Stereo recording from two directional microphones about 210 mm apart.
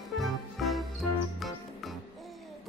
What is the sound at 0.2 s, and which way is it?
Music, centre (ahead or behind).